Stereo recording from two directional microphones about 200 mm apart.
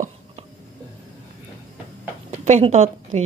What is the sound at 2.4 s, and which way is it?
Speech, 35° right (ahead or behind).